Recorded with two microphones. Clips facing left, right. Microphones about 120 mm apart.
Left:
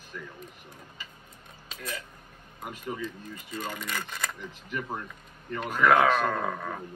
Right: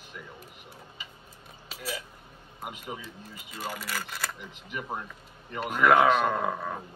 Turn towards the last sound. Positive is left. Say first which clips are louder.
# right 1 dB
turn(degrees=-10)  # may be behind; listen again after turning